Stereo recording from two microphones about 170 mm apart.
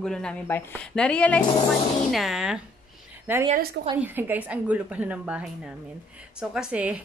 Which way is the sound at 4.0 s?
10° right (ahead or behind).